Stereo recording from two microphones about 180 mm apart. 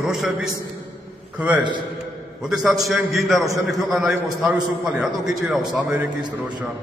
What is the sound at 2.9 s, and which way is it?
A man's voice, centre (ahead or behind).